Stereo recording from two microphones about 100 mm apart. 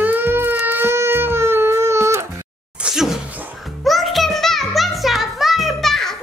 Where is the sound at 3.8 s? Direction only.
Centre (ahead or behind).